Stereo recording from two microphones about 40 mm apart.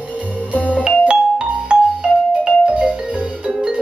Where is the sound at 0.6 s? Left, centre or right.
Left.